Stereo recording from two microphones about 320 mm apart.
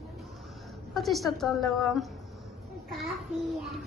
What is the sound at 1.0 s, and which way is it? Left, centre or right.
A woman's voice, centre.